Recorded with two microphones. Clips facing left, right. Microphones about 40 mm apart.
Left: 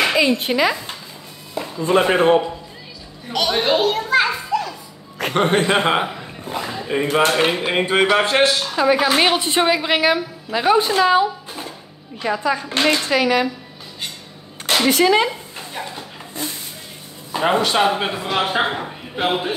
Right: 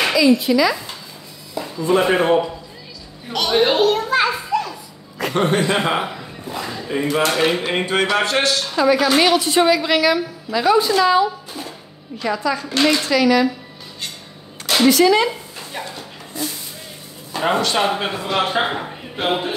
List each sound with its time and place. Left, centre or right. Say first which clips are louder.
0.1 s speech: right 3 dB; left
3.3 s a child's voice: right 2 dB; centre
5.2 s speech: left 1 dB; left
6.6 s a woman's voice: left 1 dB; centre; by 13.5 s left
14.9 s speech: right 2 dB; left
16.3 s speech: right 2 dB; left
17.3 s a man's voice: left 1 dB; centre